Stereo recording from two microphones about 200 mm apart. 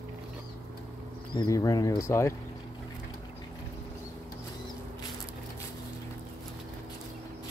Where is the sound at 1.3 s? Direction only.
20° left (ahead or behind).